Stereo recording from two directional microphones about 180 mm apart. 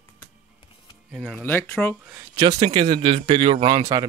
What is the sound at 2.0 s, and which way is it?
Speech, 15° right (ahead or behind).